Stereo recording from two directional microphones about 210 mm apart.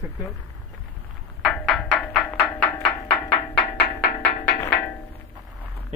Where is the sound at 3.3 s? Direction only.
20° left (ahead or behind).